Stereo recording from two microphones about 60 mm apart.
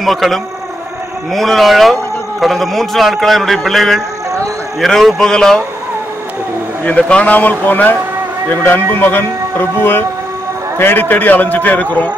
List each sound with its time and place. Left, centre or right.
0.0 s a man's voice: centre
6.8 s a man's voice: centre